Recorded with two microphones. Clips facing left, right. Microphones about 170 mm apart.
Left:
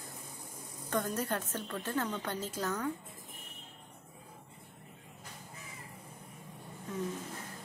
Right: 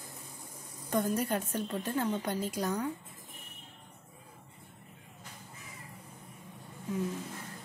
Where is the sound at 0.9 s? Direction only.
10° right (ahead or behind).